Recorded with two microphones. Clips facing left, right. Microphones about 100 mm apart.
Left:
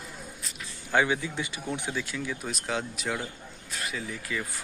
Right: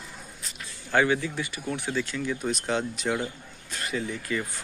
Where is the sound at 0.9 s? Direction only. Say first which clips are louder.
Right 2 dB; 15° left (ahead or behind).